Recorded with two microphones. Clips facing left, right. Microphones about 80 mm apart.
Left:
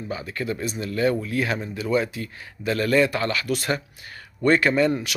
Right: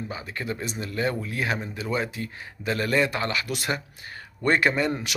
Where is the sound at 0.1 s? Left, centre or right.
Right.